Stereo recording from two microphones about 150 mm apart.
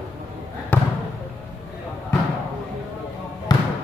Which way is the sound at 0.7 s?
10° left (ahead or behind).